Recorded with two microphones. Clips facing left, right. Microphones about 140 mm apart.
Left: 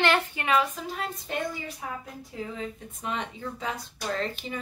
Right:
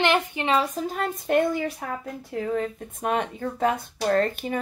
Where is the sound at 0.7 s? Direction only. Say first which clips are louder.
Right 6 dB; 50° right (ahead or behind).